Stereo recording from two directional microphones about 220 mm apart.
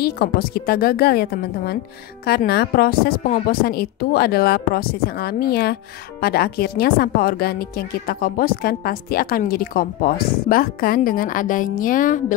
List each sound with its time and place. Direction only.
0.0 s a woman's voice: 45° left (ahead or behind)